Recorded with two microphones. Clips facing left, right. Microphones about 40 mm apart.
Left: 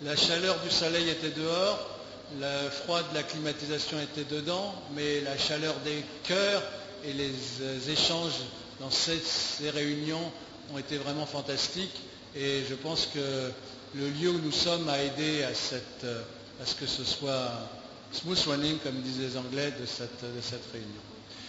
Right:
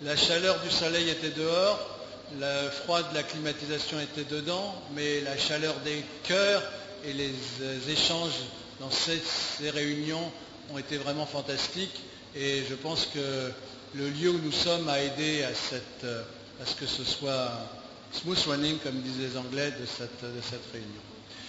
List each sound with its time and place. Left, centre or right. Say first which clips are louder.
0.1 s a man's voice: right 2 dB; centre
0.4 s a man's voice: right 2 dB; centre
8.4 s a man's voice: right 1 dB; centre
11.5 s a man's voice: right 1 dB; centre
18.2 s a man's voice: right 1 dB; centre
19.3 s a man's voice: right 1 dB; centre
19.8 s a man's voice: even; centre